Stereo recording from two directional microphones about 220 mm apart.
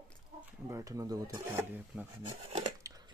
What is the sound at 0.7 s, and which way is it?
Speech, 15° right (ahead or behind).